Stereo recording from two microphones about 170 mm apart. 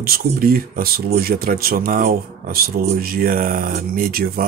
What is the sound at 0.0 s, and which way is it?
Speech, 60° right (ahead or behind).